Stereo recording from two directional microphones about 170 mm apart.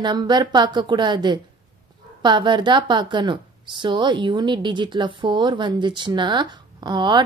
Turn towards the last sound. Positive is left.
turn(degrees=-25)  # may be behind; listen again after turning